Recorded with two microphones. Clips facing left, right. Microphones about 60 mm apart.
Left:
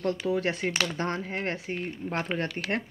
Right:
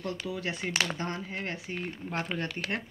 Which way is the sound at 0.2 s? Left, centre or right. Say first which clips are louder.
Left 7 dB; left.